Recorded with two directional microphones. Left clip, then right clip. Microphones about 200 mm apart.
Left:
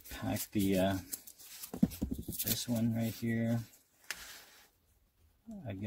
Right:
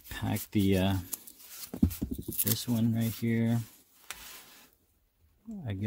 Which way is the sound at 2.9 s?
40° right (ahead or behind).